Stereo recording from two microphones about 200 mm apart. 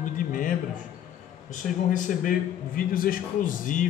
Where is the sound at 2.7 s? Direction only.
45° left (ahead or behind).